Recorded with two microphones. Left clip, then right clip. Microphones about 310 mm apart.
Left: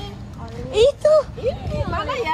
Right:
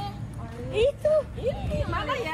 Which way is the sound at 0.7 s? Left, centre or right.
Left.